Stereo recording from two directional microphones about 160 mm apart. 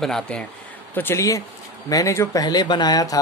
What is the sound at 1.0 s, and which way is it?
Speech, 15° left (ahead or behind).